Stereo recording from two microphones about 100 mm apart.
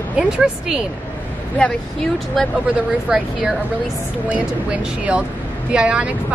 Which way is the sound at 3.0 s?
5° right (ahead or behind).